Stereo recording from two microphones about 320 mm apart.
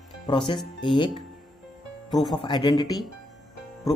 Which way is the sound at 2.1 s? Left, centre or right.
Centre.